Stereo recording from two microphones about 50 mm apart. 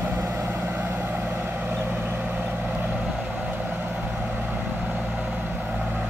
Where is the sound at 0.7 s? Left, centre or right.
Right.